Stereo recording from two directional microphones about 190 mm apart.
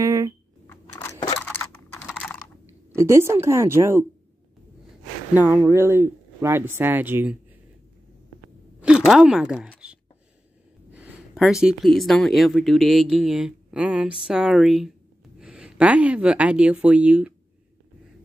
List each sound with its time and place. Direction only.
0.0 s a sound: 15° right (ahead or behind)
0.7 s a sound: 15° left (ahead or behind)
1.4 s typing: 10° left (ahead or behind)
2.0 s computer keyboard: 5° left (ahead or behind)
2.9 s speech: 15° right (ahead or behind)
5.3 s speech: 10° right (ahead or behind)
8.8 s speech: 5° right (ahead or behind)
10.9 s speech: 10° right (ahead or behind)